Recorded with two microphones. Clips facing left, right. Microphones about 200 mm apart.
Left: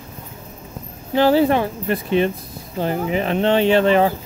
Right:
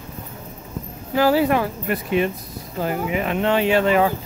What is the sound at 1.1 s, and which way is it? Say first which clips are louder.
Speech: left 2 dB; 25° left (ahead or behind).